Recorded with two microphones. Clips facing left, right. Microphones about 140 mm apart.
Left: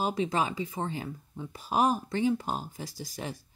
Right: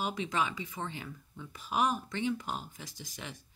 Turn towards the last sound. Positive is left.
turn(degrees=35)  # may be behind; listen again after turning